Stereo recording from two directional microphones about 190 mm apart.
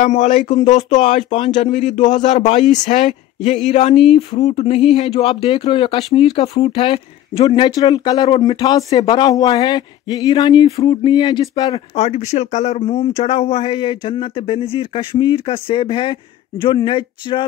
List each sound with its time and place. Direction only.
0.0 s speech: 40° left (ahead or behind); by 17.5 s 25° left (ahead or behind)